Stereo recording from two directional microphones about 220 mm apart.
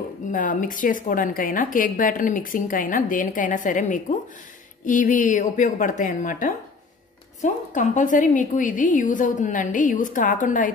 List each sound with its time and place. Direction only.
0.3 s a woman's voice: 35° left (ahead or behind)